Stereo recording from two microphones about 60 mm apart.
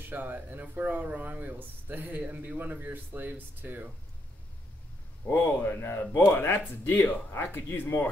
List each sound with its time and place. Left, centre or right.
0.1 s speech: right
5.3 s speech: left